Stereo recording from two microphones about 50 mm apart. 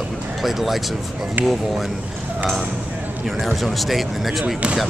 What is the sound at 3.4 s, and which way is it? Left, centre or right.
Speech, centre.